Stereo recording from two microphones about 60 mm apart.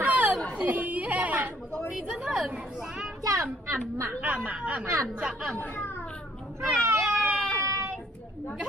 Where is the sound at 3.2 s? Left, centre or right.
Right.